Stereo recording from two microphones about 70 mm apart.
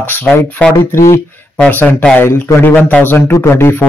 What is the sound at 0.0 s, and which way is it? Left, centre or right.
Speech, left.